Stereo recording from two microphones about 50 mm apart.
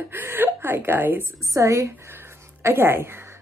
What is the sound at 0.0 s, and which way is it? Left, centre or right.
Speech, right.